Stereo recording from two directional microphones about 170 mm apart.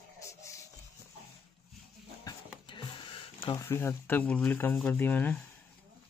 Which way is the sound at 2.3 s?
30° left (ahead or behind).